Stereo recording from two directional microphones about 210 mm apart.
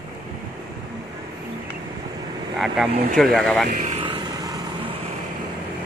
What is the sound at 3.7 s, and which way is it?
Vehicle, 35° right (ahead or behind).